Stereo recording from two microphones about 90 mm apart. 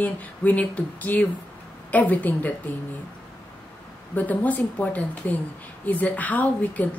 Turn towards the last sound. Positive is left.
turn(degrees=20)  # may be behind; listen again after turning